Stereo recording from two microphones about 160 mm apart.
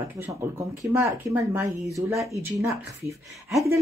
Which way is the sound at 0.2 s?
15° right (ahead or behind).